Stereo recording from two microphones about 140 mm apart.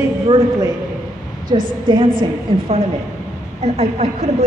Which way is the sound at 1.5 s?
35° right (ahead or behind).